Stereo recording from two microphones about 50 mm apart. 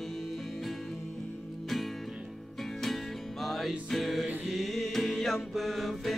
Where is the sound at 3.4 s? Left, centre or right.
Centre.